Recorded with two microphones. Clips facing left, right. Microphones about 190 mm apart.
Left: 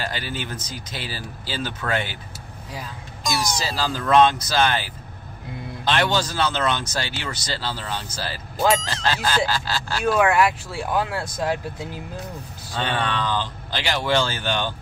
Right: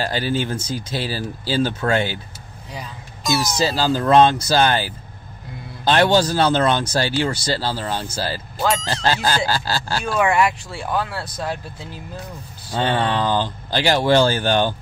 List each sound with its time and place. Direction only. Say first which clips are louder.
0.0 s speech: right 8 dB; 35° right (ahead or behind)
2.7 s speech: right 1 dB; centre (ahead or behind)
3.6 s speech: right 7 dB; 30° right (ahead or behind)
5.9 s speech: right 6 dB; 35° right (ahead or behind)
8.6 s speech: right 1 dB; centre (ahead or behind)
9.5 s speech: right 3 dB; 35° right (ahead or behind)
10.1 s speech: right 1 dB; centre (ahead or behind)
12.8 s speech: right 5 dB; 30° right (ahead or behind)